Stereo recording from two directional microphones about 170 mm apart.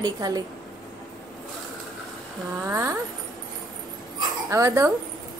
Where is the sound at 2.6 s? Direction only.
15° right (ahead or behind).